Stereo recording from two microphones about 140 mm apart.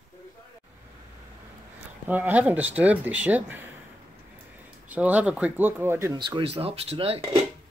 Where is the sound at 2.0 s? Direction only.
10° right (ahead or behind).